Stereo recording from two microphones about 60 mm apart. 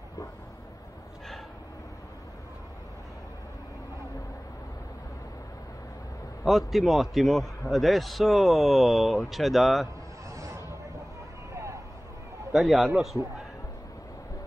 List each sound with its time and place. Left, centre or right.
6.4 s speech: centre
10.3 s a sound: right
12.5 s speech: centre